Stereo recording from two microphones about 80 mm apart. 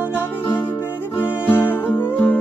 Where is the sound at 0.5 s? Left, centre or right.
Left.